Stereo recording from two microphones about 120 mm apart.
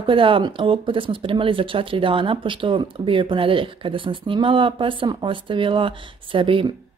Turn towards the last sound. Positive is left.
turn(degrees=-45)  # may be behind; listen again after turning